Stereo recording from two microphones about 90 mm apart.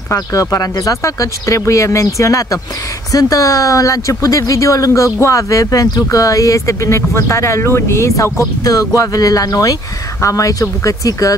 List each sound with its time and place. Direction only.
0.1 s speech: 40° left (ahead or behind)